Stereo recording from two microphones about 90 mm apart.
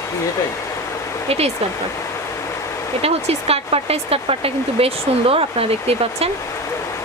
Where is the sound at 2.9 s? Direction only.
90° right.